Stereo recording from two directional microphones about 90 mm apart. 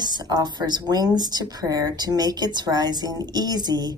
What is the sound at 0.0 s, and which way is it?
A woman's voice, 50° right (ahead or behind).